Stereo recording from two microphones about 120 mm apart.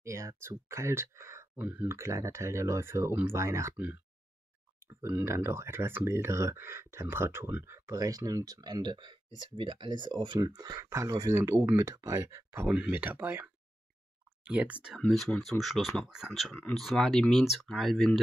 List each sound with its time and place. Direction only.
0.0 s speech: 25° right (ahead or behind)
12.6 s speech: 10° right (ahead or behind)
15.0 s speech: centre (ahead or behind)